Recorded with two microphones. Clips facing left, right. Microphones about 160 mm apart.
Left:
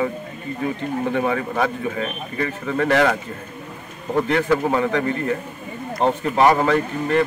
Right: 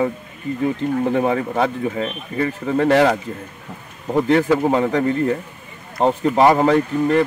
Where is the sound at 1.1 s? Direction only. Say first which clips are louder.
Right 3 dB; 30° right (ahead or behind).